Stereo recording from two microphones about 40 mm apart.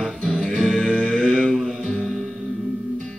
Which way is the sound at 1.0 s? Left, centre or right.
Centre.